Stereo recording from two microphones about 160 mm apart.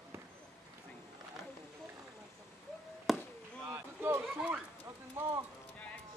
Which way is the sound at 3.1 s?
Centre (ahead or behind).